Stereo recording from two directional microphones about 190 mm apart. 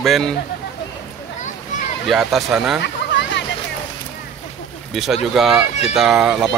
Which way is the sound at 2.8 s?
65° left (ahead or behind).